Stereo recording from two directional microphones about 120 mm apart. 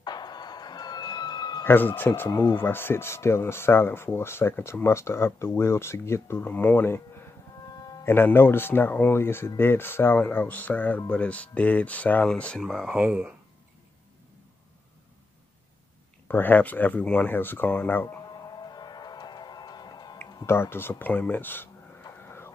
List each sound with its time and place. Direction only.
0.0 s music: 35° left (ahead or behind)
1.6 s speech: 20° left (ahead or behind)
8.0 s speech: 15° left (ahead or behind)
12.6 s speech: 5° right (ahead or behind)
16.3 s speech: 15° left (ahead or behind)
18.3 s music: 35° left (ahead or behind)
20.4 s speech: 20° left (ahead or behind)
22.0 s a sound: 20° left (ahead or behind)